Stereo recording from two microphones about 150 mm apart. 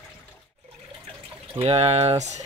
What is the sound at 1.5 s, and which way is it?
Speech, 45° right (ahead or behind).